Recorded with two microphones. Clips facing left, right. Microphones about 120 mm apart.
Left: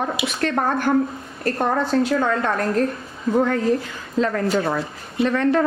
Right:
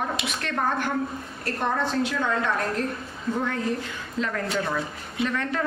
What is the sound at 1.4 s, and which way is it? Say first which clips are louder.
A woman's voice: left 6 dB; 45° left (ahead or behind).